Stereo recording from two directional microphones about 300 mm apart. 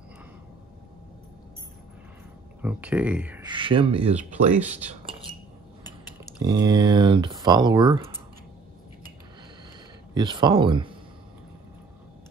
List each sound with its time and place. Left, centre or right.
2.6 s speech: centre; by 4.3 s right
4.6 s speech: centre
6.4 s speech: centre
10.1 s speech: centre